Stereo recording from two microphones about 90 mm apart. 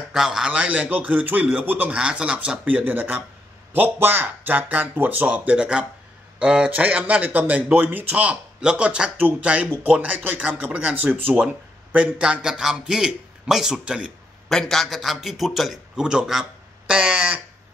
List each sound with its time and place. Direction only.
0.1 s speech: 5° right (ahead or behind)
14.5 s a man's voice: 5° left (ahead or behind)